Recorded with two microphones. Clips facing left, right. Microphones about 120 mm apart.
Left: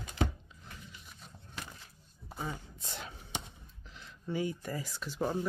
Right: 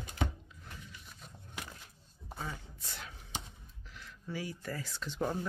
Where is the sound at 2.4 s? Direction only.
20° left (ahead or behind).